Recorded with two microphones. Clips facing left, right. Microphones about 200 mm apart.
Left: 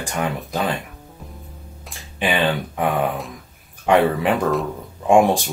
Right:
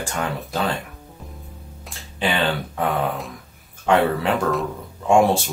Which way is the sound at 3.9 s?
15° left (ahead or behind).